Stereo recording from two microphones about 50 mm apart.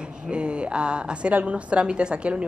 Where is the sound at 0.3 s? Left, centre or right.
Right.